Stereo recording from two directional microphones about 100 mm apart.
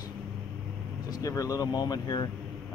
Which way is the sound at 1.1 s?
35° left (ahead or behind).